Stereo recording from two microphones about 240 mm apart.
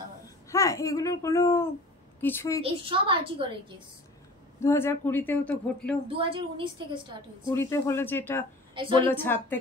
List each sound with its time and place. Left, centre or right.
0.5 s speech: centre
2.6 s a woman's voice: right
4.6 s speech: centre
6.0 s a woman's voice: right
7.4 s speech: centre
8.7 s a woman's voice: right
9.0 s speech: centre